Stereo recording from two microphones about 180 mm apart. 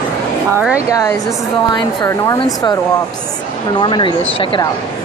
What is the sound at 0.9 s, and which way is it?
Speech, 20° left (ahead or behind).